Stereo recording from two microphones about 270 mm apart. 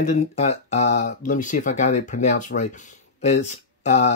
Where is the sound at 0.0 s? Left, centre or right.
Left.